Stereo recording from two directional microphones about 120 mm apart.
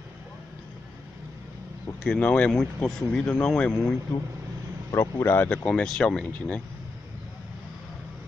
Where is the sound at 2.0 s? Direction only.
10° left (ahead or behind).